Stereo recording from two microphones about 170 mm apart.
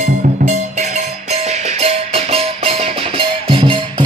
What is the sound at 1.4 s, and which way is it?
Music, 40° right (ahead or behind).